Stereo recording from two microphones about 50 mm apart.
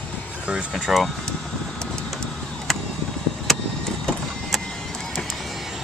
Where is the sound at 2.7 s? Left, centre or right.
Centre.